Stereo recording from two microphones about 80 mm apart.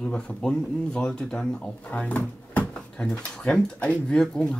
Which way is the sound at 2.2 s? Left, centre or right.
Centre.